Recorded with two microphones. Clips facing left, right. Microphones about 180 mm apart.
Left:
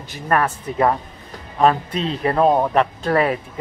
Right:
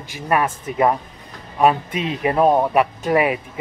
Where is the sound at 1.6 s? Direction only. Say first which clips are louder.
Even; 10° right (ahead or behind).